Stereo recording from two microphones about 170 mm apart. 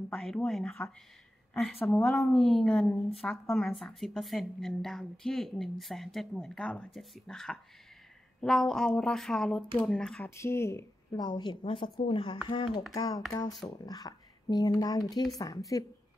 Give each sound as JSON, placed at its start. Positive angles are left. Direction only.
{"t": 0.1, "sound": "a woman's voice", "side_deg": 0}
{"t": 1.8, "sound": "a woman's voice", "side_deg": 15}
{"t": 2.0, "sound": "a woman's voice", "side_deg": 0}
{"t": 10.3, "sound": "a woman's voice", "side_deg": 15}